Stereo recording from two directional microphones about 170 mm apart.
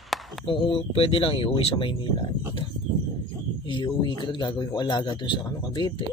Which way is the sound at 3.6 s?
25° left (ahead or behind).